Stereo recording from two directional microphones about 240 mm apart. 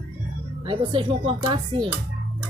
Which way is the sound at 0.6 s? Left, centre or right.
Right.